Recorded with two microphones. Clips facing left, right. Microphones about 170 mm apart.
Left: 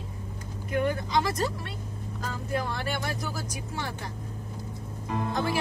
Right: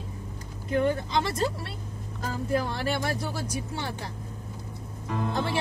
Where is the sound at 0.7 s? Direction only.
30° right (ahead or behind).